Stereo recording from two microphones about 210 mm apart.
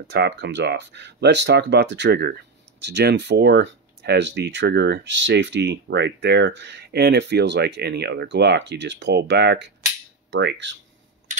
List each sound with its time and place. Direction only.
0.1 s speech: 55° right (ahead or behind)